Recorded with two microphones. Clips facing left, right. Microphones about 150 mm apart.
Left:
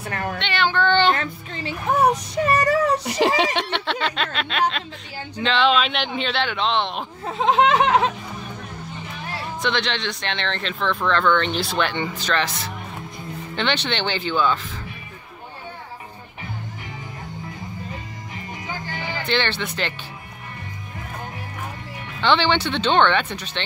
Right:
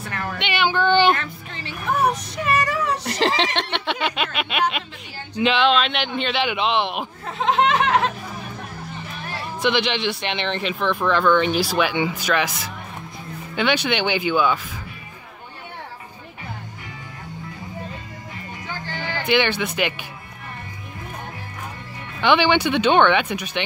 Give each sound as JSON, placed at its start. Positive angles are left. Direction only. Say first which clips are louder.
{"t": 0.4, "sound": "child singing", "louder": "right 1 dB", "side_deg": -10}
{"t": 1.9, "sound": "music", "louder": "left 2 dB", "side_deg": 30}
{"t": 3.1, "sound": "speech", "louder": "left 2 dB", "side_deg": 10}
{"t": 3.8, "sound": "a sound", "louder": "right 1 dB", "side_deg": -5}
{"t": 5.4, "sound": "a man's voice", "louder": "right 1 dB", "side_deg": -5}
{"t": 7.2, "sound": "a sound", "louder": "left 2 dB", "side_deg": 15}
{"t": 9.6, "sound": "speech", "louder": "right 4 dB", "side_deg": -5}
{"t": 19.2, "sound": "speech", "louder": "right 4 dB", "side_deg": -10}
{"t": 22.2, "sound": "speech", "louder": "right 2 dB", "side_deg": -10}